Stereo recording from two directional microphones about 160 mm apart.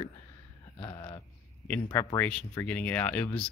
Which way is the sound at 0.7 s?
35° left (ahead or behind).